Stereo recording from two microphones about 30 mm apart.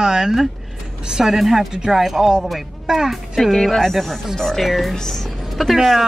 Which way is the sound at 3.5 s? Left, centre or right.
Centre.